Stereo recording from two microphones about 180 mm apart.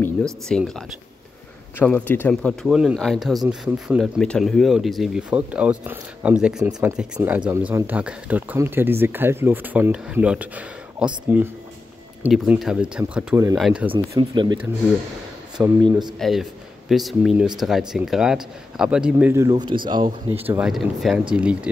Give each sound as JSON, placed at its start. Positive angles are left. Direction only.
{"t": 0.0, "sound": "a man's voice", "side_deg": 5}
{"t": 2.7, "sound": "a man's voice", "side_deg": -5}
{"t": 13.9, "sound": "speech", "side_deg": -25}
{"t": 15.6, "sound": "speech", "side_deg": -15}
{"t": 16.2, "sound": "a man's voice", "side_deg": 0}
{"t": 20.4, "sound": "a man's voice", "side_deg": -5}